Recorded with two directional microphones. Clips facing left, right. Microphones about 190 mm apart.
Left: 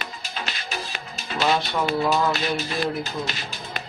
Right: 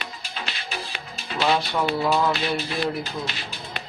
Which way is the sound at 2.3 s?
45° left (ahead or behind).